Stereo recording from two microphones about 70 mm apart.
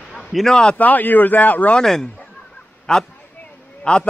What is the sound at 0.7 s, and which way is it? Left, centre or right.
Speech, left.